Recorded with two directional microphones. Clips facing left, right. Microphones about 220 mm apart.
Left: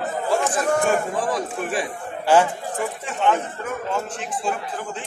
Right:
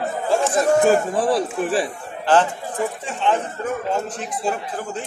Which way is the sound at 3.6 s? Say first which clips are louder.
Right 3 dB; 35° right (ahead or behind).